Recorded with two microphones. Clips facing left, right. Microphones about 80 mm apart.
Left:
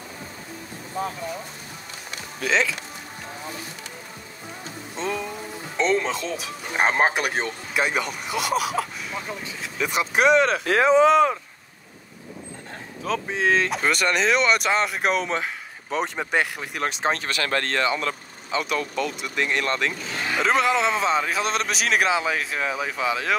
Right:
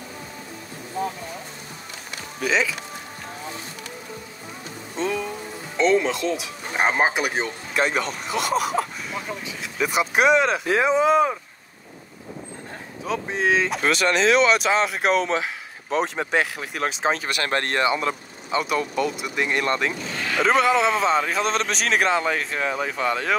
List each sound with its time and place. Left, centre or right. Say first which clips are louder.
2.4 s speech: even; centre
4.9 s a sound: right 3 dB; centre
5.8 s speech: right 3 dB; centre
13.0 s speech: even; centre
17.4 s speech: right 1 dB; right
18.5 s speech: right 2 dB; centre
20.2 s speech: right 2 dB; centre